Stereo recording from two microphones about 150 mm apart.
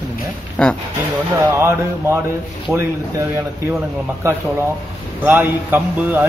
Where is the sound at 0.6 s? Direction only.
5° left (ahead or behind).